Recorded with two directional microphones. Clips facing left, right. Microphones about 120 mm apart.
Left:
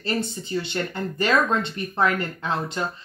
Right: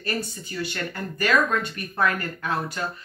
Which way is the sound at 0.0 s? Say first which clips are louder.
Left 3 dB; 25° left (ahead or behind).